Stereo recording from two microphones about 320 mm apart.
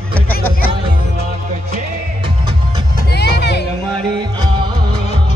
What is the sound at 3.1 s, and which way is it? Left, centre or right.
Music, left.